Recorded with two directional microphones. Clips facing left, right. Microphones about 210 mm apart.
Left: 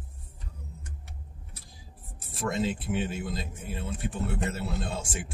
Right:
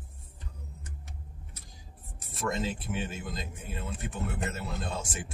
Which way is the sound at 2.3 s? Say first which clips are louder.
Left 3 dB; 30° left (ahead or behind).